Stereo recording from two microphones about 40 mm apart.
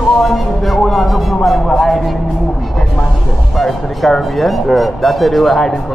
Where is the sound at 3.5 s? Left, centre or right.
Centre.